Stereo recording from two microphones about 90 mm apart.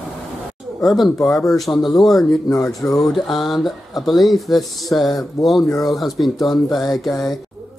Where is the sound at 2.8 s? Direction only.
15° left (ahead or behind).